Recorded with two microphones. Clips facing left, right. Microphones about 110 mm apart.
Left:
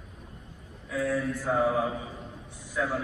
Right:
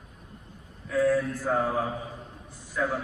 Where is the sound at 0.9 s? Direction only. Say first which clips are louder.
Right 5 dB; centre (ahead or behind).